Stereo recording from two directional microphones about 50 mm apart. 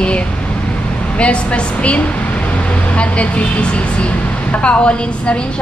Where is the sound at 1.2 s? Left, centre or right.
Left.